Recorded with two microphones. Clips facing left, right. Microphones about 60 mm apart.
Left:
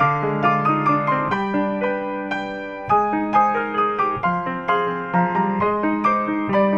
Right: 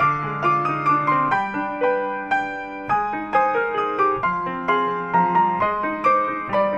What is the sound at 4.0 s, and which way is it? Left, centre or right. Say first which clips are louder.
Music: right 1 dB; left.